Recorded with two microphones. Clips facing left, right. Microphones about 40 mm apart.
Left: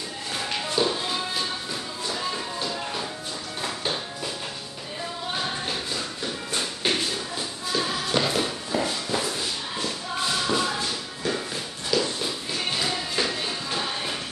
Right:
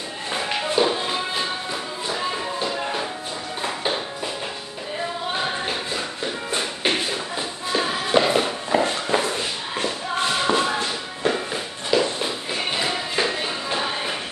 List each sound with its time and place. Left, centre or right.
0.3 s music: right
5.3 s shuffle: right